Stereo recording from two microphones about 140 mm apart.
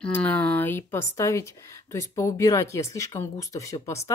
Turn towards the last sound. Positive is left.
turn(degrees=20)  # may be behind; listen again after turning